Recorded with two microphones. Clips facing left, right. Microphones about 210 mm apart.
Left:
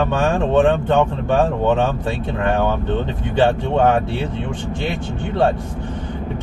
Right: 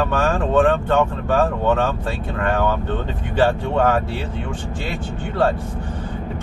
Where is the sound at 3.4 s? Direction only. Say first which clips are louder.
Left 2 dB; 20° left (ahead or behind).